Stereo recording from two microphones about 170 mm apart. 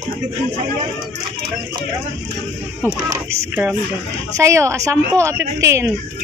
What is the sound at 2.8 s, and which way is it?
Speech, 10° right (ahead or behind).